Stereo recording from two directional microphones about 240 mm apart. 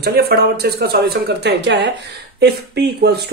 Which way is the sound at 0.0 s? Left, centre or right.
Right.